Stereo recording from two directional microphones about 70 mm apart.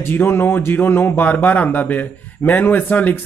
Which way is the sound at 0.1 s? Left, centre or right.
Left.